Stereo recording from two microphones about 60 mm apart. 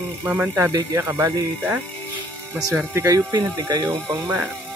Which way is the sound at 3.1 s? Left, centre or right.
Right.